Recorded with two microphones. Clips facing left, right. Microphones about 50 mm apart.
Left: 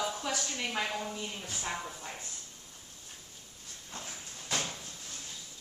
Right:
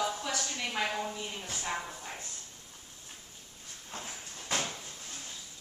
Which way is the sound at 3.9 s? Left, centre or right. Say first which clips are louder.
Right 2 dB; right.